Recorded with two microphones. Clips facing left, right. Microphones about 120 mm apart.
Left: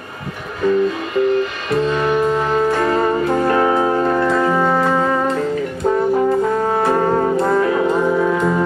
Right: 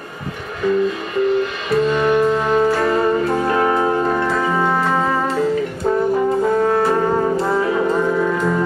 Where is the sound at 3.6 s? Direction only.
10° left (ahead or behind).